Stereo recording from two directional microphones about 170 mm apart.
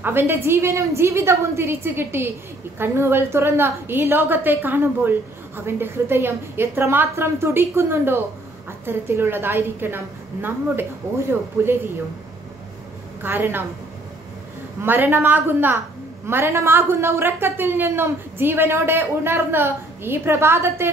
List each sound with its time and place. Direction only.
0.0 s a woman's voice: 15° right (ahead or behind)
13.2 s a woman's voice: 10° right (ahead or behind)
14.8 s a woman's voice: 10° right (ahead or behind)